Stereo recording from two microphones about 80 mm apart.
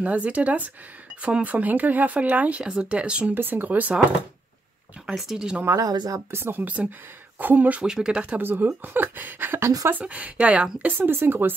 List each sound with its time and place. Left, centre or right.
0.0 s speech: centre
5.0 s speech: centre
5.8 s speech: right
6.3 s speech: right
7.8 s speech: centre
8.4 s speech: right